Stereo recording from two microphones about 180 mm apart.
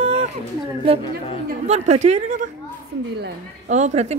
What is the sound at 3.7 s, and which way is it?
Speech, 40° right (ahead or behind).